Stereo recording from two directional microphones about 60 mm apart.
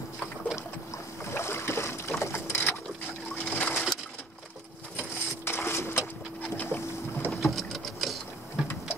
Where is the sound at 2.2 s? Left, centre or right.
Left.